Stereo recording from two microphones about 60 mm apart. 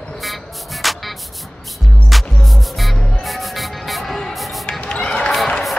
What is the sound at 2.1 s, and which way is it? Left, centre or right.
Music, centre.